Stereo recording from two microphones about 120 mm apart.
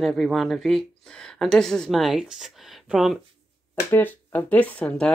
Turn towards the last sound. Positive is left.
turn(degrees=10)  # may be behind; listen again after turning